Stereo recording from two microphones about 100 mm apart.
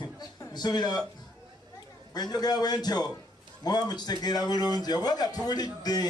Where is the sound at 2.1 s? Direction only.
40° left (ahead or behind).